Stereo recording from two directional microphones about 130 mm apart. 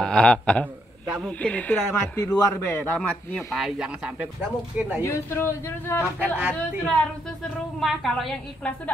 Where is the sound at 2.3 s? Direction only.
20° left (ahead or behind).